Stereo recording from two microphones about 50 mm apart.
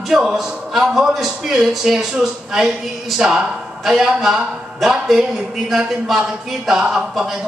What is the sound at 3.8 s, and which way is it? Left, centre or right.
A man's voice, centre.